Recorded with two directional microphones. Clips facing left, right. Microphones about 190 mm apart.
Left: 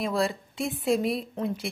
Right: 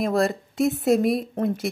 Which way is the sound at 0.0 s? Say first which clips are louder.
Right 5 dB; 45° right (ahead or behind).